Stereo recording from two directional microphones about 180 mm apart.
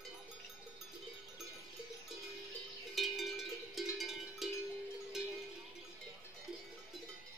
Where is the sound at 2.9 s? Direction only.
Centre (ahead or behind).